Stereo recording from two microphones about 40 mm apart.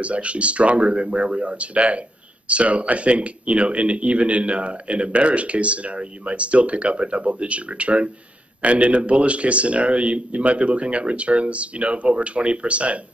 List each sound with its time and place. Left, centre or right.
0.0 s speech: right